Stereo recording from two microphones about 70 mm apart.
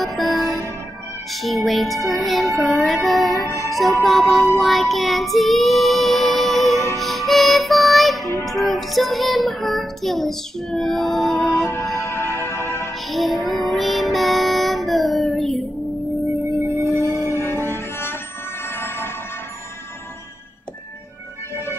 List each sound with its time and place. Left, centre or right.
0.0 s music: centre
1.3 s child singing: centre
3.6 s music: centre
8.5 s child singing: centre
11.4 s music: left
13.1 s music: centre
16.3 s music: right
17.3 s music: left